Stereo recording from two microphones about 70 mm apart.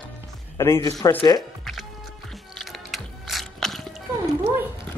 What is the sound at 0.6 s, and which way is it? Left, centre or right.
Speech, left.